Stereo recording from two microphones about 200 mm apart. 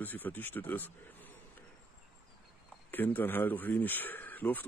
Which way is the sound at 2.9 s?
10° left (ahead or behind).